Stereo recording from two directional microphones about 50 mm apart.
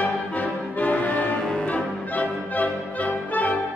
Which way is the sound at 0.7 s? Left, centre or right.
Left.